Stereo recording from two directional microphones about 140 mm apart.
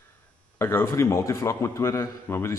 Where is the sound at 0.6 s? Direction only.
15° left (ahead or behind).